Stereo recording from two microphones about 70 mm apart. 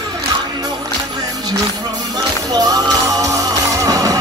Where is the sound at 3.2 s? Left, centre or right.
Right.